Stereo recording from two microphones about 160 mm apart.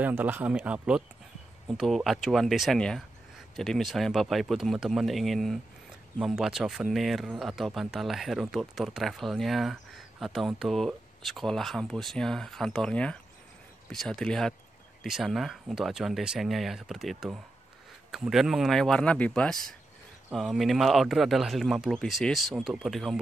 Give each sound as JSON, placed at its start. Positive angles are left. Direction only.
{"t": 0.0, "sound": "speech", "side_deg": -10}